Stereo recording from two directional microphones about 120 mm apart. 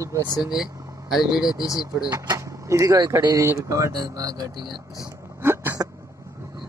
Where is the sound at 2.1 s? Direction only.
25° right (ahead or behind).